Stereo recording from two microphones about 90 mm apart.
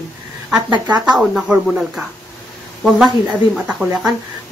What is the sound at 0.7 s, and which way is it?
Speech, 50° right (ahead or behind).